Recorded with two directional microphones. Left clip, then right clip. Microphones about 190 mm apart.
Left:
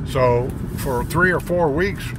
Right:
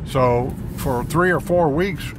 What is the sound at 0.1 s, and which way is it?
Speech, 25° right (ahead or behind).